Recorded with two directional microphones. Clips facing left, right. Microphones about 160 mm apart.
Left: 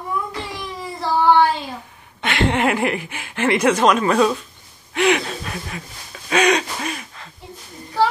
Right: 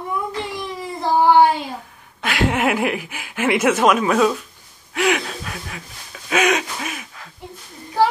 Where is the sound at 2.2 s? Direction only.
Centre (ahead or behind).